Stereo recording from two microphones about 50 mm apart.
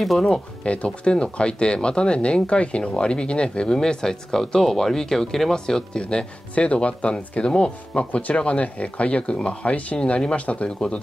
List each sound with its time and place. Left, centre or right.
0.0 s speech: centre
0.7 s speech: left